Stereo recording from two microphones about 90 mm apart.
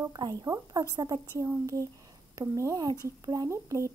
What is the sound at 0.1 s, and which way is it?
A woman's voice, 45° right (ahead or behind).